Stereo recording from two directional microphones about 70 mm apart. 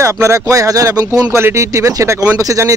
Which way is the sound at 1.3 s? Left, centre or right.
Right.